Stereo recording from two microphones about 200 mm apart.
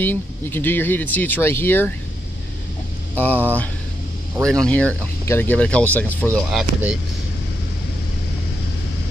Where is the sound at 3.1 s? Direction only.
10° left (ahead or behind).